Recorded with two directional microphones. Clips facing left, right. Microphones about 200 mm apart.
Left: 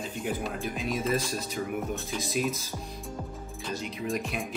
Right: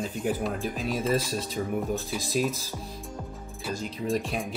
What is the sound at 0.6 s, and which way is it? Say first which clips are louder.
Speech: right 2 dB; 35° right (ahead or behind).